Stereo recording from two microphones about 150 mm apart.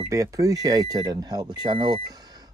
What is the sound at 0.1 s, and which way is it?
Speech, 20° right (ahead or behind).